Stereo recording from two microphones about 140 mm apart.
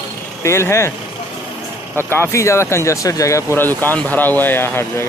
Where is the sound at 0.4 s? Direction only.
20° left (ahead or behind).